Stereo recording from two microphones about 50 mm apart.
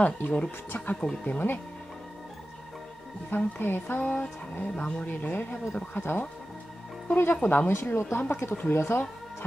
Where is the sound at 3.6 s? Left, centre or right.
Left.